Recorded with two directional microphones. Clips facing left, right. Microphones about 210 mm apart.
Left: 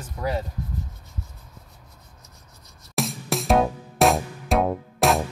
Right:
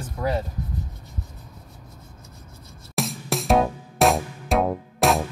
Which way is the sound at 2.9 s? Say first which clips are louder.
Even; centre (ahead or behind).